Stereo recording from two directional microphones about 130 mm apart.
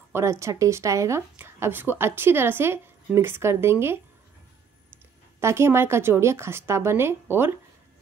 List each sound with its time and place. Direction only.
0.1 s speech: 20° right (ahead or behind)
5.4 s speech: 20° right (ahead or behind)